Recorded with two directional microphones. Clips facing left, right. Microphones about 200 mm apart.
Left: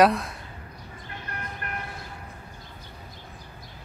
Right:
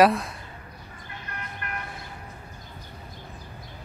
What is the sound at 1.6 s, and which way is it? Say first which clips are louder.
Vehicle: right 1 dB; 40° left (ahead or behind).